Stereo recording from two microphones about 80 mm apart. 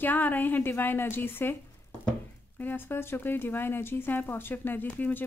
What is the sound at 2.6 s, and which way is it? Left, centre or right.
Speech, left.